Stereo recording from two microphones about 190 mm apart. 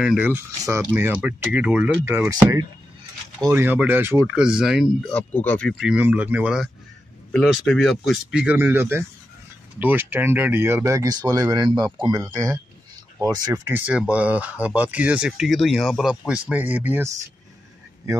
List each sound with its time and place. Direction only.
0.0 s speech: 5° right (ahead or behind)
3.4 s speech: 10° right (ahead or behind)